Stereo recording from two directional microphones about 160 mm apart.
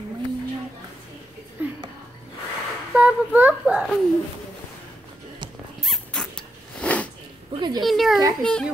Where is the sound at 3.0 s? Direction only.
10° right (ahead or behind).